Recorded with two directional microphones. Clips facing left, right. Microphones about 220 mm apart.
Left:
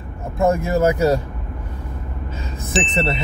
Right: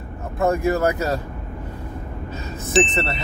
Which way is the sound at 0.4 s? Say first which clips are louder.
Left 2 dB; 15° left (ahead or behind).